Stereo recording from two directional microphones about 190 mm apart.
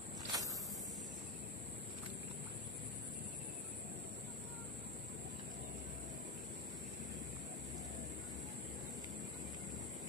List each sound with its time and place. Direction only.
0.3 s walk: 20° right (ahead or behind)